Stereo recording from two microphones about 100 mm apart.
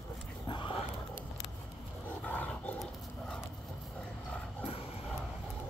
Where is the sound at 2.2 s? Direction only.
15° left (ahead or behind).